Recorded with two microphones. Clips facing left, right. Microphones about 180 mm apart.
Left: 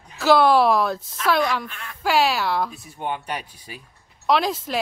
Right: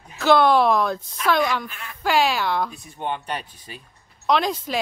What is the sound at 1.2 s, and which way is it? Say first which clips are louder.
A woman's voice: even; centre (ahead or behind).